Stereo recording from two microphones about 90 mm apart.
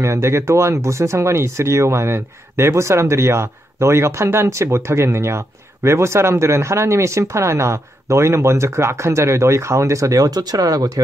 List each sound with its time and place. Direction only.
0.0 s speech: 30° right (ahead or behind)